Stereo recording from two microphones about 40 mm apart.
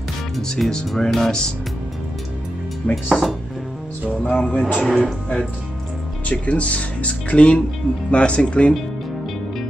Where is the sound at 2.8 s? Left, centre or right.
Left.